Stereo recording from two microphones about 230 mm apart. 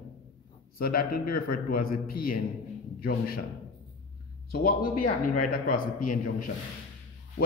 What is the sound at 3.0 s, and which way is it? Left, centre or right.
Speech, left.